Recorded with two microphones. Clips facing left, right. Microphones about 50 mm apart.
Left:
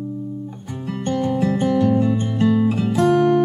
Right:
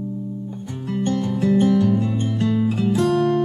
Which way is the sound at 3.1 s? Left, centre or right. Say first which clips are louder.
Left 6 dB; left.